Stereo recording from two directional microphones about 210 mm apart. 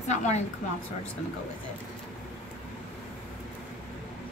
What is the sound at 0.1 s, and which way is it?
Speech, 35° left (ahead or behind).